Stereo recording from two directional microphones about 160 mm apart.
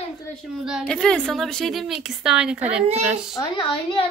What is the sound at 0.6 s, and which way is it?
A woman's voice, centre (ahead or behind).